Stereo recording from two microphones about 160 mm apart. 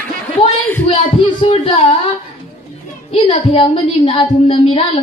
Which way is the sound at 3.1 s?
30° left (ahead or behind).